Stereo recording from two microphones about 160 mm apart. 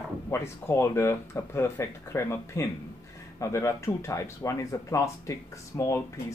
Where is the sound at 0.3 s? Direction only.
15° left (ahead or behind).